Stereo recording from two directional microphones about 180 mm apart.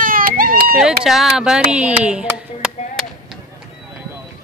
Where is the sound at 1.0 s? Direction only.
Centre (ahead or behind).